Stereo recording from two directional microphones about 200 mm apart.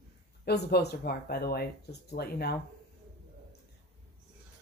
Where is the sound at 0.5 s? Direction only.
55° left (ahead or behind).